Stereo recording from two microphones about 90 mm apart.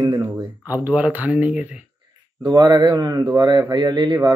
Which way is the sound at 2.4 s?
60° right (ahead or behind).